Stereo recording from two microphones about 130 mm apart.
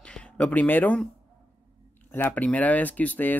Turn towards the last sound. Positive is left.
turn(degrees=15)  # may be behind; listen again after turning